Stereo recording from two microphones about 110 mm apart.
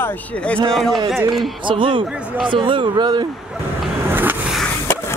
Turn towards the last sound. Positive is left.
turn(degrees=-20)  # may be behind; listen again after turning